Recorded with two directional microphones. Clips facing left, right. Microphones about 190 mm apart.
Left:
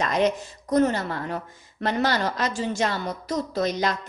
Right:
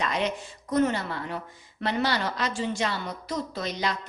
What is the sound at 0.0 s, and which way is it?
Speech, 45° left (ahead or behind).